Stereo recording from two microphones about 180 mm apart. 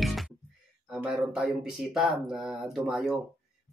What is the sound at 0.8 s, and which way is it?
Speech, 5° right (ahead or behind).